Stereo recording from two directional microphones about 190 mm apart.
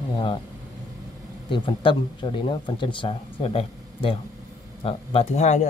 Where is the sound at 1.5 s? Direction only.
25° left (ahead or behind).